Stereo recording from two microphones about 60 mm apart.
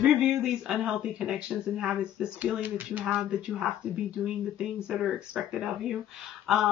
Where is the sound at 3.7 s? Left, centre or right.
Centre.